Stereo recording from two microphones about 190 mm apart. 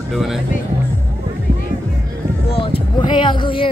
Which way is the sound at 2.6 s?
25° left (ahead or behind).